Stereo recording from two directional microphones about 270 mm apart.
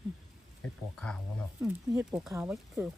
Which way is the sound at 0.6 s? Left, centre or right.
Centre.